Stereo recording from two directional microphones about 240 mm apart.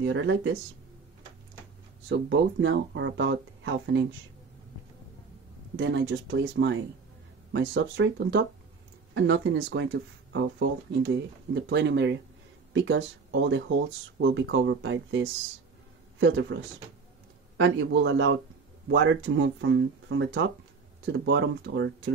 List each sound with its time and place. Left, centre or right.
0.0 s speech: right
2.0 s speech: right
5.8 s speech: right
17.6 s speech: right